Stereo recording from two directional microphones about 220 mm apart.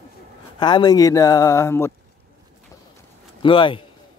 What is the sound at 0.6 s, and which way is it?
Speech, 20° left (ahead or behind).